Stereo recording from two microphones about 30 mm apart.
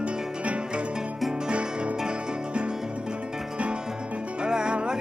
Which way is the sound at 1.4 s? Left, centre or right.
Right.